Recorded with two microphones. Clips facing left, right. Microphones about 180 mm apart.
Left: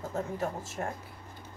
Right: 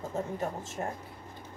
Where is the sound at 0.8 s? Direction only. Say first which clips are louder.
Even; 15° right (ahead or behind).